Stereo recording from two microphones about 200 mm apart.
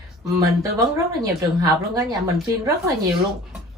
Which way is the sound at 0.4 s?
15° right (ahead or behind).